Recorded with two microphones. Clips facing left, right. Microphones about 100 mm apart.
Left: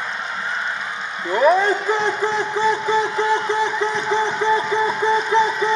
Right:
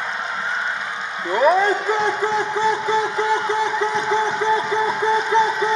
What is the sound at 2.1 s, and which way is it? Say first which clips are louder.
Speech: right 1 dB; 30° right (ahead or behind).